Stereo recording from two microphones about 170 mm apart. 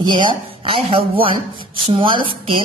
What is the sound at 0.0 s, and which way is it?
A woman's voice, 25° right (ahead or behind).